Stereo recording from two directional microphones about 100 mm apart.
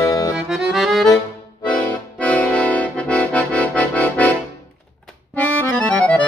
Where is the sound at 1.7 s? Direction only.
10° left (ahead or behind).